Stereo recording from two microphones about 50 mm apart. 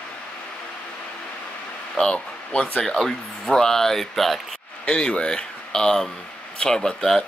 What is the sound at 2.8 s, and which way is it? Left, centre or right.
Speech, centre.